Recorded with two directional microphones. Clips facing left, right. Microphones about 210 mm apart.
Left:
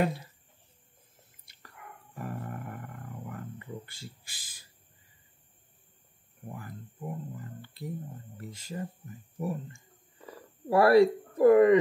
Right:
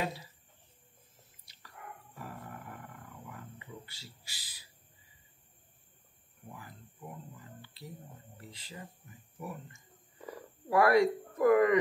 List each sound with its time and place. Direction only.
0.0 s speech: 55° left (ahead or behind)
1.4 s dog: 55° left (ahead or behind)
2.1 s roaring cats: 50° left (ahead or behind)
6.5 s speech: 50° left (ahead or behind)
9.4 s speech: 35° left (ahead or behind)